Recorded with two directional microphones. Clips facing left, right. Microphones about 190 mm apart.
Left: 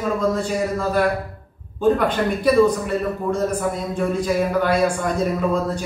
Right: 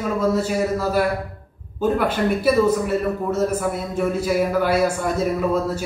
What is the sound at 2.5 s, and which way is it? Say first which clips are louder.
A man's voice: left 2 dB; 5° right (ahead or behind).